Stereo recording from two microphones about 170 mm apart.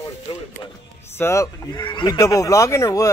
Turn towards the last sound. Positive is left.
turn(degrees=20)  # may be behind; listen again after turning